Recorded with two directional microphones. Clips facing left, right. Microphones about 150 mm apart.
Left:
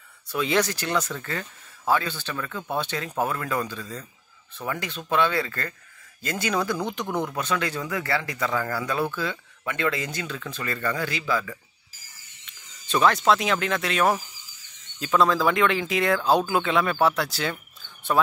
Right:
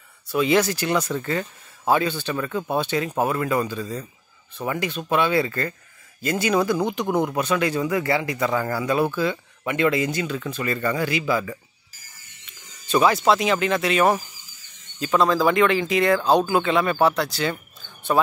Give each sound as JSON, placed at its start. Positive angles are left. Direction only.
{"t": 0.3, "sound": "speech", "side_deg": -5}
{"t": 12.8, "sound": "speech", "side_deg": -5}